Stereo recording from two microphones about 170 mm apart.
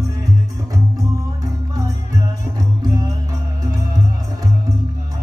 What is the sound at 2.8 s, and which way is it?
Music, 20° right (ahead or behind).